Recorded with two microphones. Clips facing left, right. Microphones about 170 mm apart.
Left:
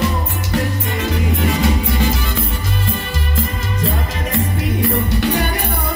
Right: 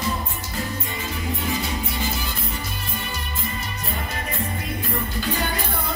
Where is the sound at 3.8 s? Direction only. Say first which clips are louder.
Left 11 dB; 90° left.